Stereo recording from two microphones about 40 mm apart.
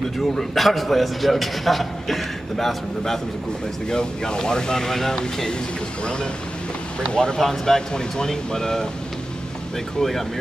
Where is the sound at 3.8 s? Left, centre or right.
Centre.